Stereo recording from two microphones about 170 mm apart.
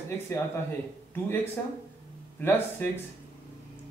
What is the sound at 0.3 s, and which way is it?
Speech, 15° left (ahead or behind).